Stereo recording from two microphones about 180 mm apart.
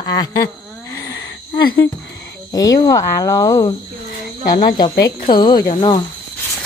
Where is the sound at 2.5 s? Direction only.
20° left (ahead or behind).